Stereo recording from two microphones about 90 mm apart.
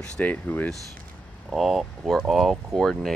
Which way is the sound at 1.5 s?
Centre (ahead or behind).